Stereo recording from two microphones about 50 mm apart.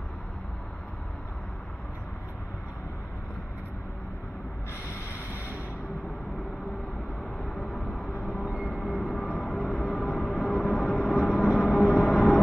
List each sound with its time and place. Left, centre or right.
7.3 s vehicle: centre
8.8 s music: centre